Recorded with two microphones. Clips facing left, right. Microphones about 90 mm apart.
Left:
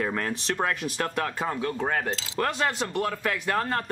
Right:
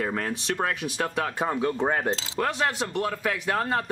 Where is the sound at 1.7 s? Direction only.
20° right (ahead or behind).